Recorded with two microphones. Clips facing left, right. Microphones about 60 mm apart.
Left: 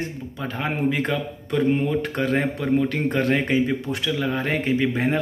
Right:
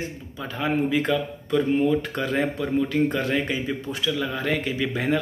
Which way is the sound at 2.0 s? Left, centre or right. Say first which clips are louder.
Left 2 dB; left.